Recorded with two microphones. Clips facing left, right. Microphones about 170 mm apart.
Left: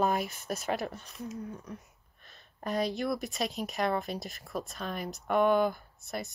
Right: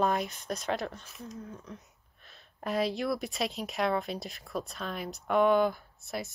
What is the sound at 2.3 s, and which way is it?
A woman's voice, centre (ahead or behind).